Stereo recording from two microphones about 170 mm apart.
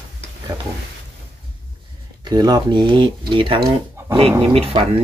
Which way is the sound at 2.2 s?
25° right (ahead or behind).